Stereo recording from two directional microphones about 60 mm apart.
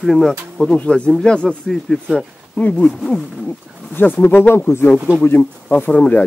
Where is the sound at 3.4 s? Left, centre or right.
Left.